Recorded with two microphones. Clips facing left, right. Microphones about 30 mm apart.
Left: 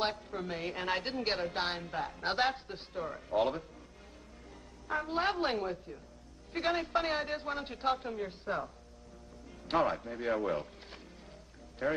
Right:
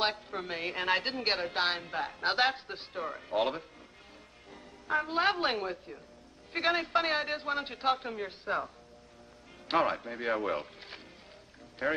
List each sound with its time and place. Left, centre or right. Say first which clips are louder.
0.0 s a woman's voice: right 3 dB; right
4.8 s a woman's voice: right 4 dB; right